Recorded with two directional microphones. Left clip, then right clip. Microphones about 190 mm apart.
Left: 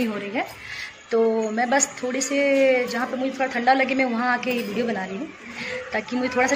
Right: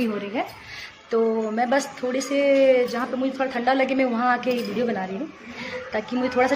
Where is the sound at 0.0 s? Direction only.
5° right (ahead or behind).